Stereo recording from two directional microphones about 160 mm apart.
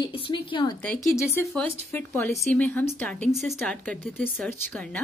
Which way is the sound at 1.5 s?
10° left (ahead or behind).